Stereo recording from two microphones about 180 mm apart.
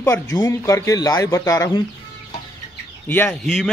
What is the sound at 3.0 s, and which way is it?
Speech, 10° left (ahead or behind).